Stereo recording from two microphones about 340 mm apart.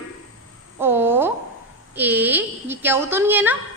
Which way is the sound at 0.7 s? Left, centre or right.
Centre.